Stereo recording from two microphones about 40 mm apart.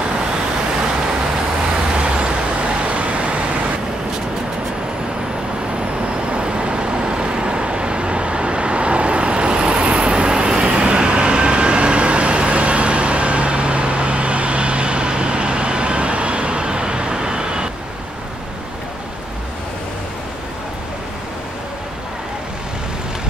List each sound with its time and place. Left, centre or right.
2.0 s vehicle: right
6.3 s vehicle: right